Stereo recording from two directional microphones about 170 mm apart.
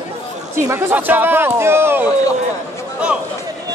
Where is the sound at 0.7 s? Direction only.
10° right (ahead or behind).